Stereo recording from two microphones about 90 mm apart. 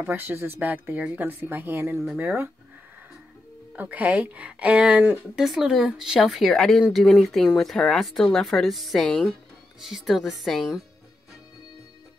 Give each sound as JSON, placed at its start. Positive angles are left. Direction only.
{"t": 0.0, "sound": "speech", "side_deg": -25}
{"t": 3.7, "sound": "speech", "side_deg": -20}